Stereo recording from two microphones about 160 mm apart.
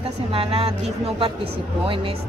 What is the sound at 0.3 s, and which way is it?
Speech, 35° right (ahead or behind).